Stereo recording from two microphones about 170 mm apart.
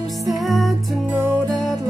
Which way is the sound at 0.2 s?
Centre (ahead or behind).